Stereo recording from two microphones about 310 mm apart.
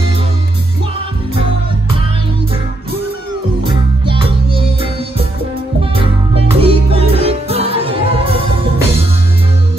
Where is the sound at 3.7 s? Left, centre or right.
Centre.